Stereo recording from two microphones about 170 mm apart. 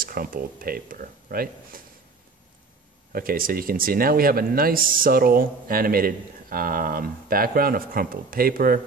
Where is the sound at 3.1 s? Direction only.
60° right (ahead or behind).